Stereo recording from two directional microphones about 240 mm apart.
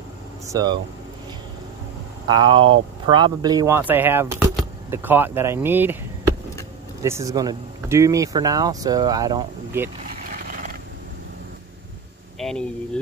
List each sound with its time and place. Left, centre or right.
0.5 s speech: centre
2.2 s speech: centre
12.4 s speech: centre